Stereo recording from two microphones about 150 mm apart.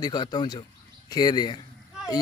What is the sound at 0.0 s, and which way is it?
Speech, 25° left (ahead or behind).